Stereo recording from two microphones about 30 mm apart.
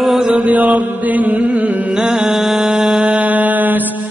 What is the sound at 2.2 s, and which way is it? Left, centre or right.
Music, centre.